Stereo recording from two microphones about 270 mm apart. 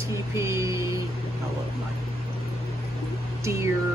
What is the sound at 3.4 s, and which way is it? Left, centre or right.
Speech, centre.